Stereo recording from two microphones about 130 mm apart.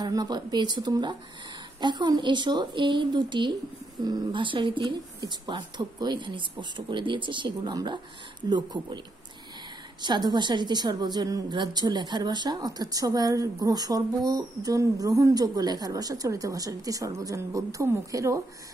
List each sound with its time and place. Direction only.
0.0 s speech: 30° right (ahead or behind)
10.0 s a woman's voice: 35° right (ahead or behind)